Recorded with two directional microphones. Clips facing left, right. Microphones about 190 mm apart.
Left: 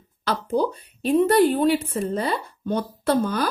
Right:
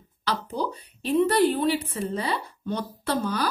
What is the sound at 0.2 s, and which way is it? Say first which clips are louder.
A woman's voice: left 6 dB; 50° left (ahead or behind).